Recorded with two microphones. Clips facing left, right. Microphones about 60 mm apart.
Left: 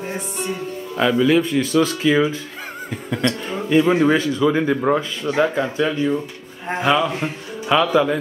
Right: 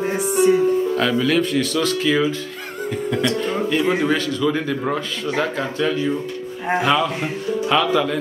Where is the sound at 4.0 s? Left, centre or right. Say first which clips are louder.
Left 3 dB; centre.